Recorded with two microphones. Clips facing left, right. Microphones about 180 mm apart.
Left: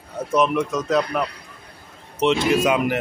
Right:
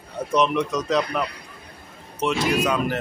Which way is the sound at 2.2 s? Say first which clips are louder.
Left 4 dB; 20° left (ahead or behind).